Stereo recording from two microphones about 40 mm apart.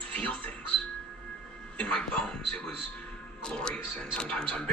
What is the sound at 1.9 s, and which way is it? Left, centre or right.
Speech, left.